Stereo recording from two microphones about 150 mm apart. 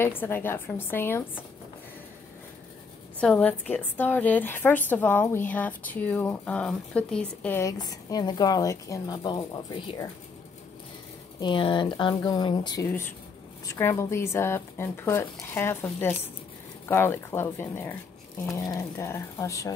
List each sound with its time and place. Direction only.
0.0 s a woman's voice: 15° left (ahead or behind)
3.2 s a woman's voice: 10° left (ahead or behind)
7.7 s speech: 25° left (ahead or behind)
11.3 s speech: 30° left (ahead or behind)
12.8 s a woman's voice: 15° left (ahead or behind)